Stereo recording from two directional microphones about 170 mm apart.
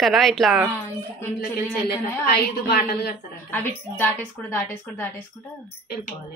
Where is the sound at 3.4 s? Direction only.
15° left (ahead or behind).